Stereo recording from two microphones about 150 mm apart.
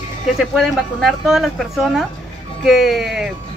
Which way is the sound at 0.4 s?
Centre (ahead or behind).